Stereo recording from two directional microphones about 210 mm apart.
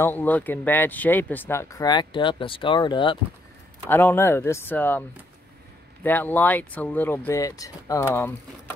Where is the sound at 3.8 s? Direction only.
10° left (ahead or behind).